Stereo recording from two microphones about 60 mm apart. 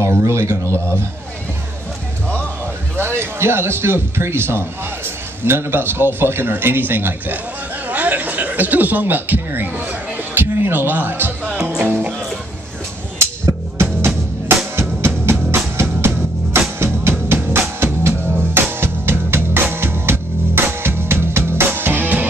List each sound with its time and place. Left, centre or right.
0.0 s speech: right
3.0 s a man's voice: right
11.4 s music: right
14.8 s music: right